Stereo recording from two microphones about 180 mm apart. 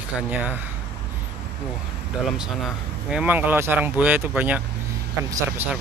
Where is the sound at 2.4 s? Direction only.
5° right (ahead or behind).